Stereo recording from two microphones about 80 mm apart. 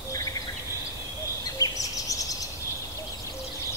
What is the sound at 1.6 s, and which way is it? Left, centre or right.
Bird vocalization, left.